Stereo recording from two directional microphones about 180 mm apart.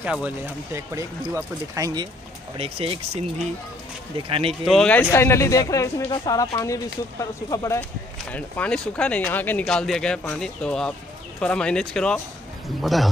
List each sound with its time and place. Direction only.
0.0 s speech: 10° right (ahead or behind)
2.5 s speech: 30° right (ahead or behind)
4.5 s speech: centre (ahead or behind)
5.1 s speech: 15° left (ahead or behind)
8.3 s speech: 5° left (ahead or behind)